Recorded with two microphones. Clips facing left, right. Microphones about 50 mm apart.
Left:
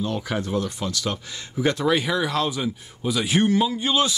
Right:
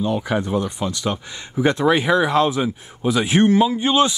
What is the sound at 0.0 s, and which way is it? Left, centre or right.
Speech, centre.